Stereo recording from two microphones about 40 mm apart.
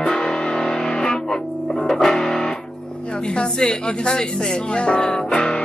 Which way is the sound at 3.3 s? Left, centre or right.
Left.